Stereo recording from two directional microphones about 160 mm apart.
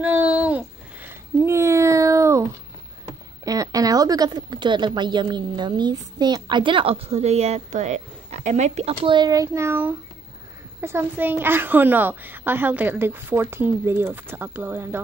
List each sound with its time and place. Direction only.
0.0 s a sound: 10° right (ahead or behind)
3.4 s speech: 20° right (ahead or behind); by 8.9 s 45° right (ahead or behind)
9.0 s a child's voice: 25° right (ahead or behind); by 15.0 s 10° right (ahead or behind)